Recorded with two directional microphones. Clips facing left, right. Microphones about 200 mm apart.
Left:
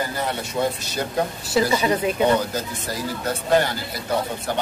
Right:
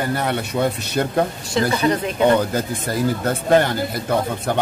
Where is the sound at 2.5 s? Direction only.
55° right (ahead or behind).